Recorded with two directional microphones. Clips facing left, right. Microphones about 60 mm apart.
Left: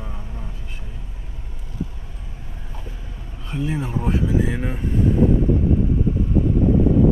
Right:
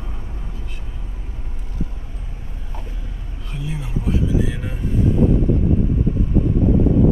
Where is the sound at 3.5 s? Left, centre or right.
Left.